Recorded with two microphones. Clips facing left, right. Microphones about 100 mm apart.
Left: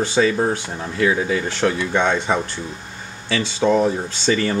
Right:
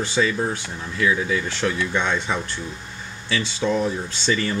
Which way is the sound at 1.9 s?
50° left (ahead or behind).